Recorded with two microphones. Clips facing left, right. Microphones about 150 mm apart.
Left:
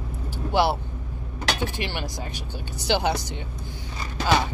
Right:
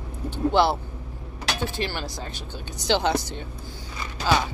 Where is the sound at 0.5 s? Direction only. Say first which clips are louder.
Right 1 dB; 10° left (ahead or behind).